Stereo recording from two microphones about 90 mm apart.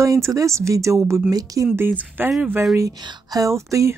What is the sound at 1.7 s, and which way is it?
Speech, 20° right (ahead or behind).